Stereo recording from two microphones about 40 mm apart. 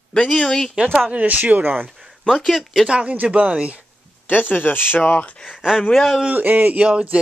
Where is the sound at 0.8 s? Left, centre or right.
Right.